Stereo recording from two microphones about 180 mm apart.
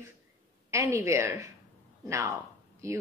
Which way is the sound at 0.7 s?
15° right (ahead or behind).